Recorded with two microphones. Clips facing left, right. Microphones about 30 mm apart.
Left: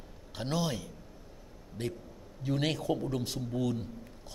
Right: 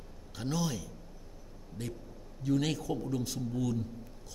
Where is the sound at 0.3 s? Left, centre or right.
Left.